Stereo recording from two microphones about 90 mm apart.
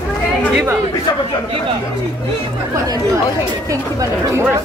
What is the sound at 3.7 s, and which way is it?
Speech, 35° right (ahead or behind).